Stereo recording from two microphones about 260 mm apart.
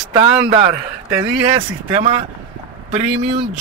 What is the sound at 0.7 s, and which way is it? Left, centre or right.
Speech, centre.